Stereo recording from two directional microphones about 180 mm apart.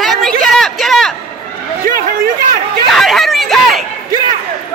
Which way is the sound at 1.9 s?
50° right (ahead or behind).